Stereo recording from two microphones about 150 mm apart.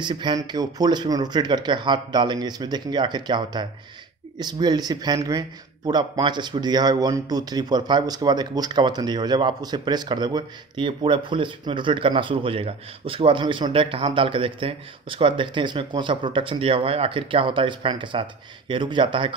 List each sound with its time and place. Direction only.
0.0 s speech: 30° right (ahead or behind)